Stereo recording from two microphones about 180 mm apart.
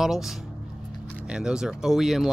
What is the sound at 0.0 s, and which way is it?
Speech, centre (ahead or behind).